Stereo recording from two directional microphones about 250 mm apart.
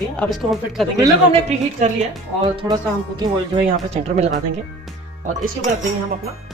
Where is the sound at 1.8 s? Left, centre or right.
Right.